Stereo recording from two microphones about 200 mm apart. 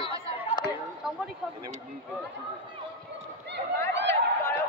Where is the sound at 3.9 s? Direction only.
60° right (ahead or behind).